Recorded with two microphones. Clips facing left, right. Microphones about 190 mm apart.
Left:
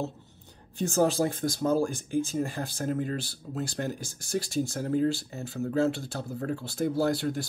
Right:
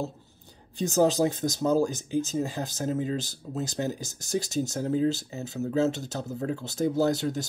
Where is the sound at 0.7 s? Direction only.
15° right (ahead or behind).